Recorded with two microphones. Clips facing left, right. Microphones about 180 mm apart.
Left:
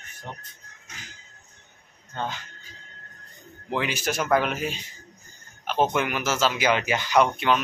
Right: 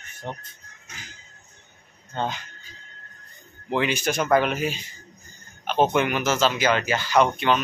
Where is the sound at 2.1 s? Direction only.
20° right (ahead or behind).